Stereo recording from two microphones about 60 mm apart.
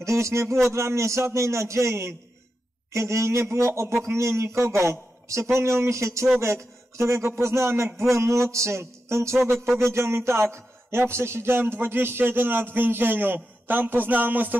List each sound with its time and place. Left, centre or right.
0.0 s a man's voice: right